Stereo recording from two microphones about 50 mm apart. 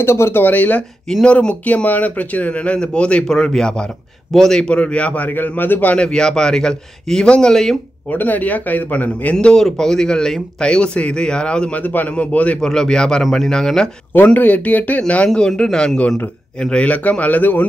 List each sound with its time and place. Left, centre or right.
0.0 s a man's voice: left
1.2 s speech: left
4.6 s speech: left
5.3 s a man's voice: left
5.9 s speech: centre
8.1 s a man's voice: left
9.4 s speech: centre
11.8 s speech: left
12.5 s speech: centre
13.2 s speech: centre
14.1 s a man's voice: left
15.2 s speech: centre
16.8 s a man's voice: left